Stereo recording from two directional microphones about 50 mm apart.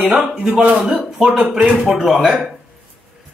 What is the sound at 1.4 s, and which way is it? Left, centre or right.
Speech, right.